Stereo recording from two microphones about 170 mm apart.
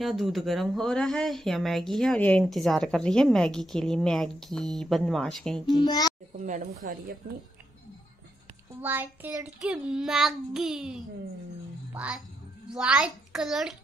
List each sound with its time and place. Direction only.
0.0 s speech: centre (ahead or behind)
5.8 s a child's voice: 25° left (ahead or behind)
6.4 s a woman's voice: 50° right (ahead or behind)
8.8 s a child's voice: 10° right (ahead or behind)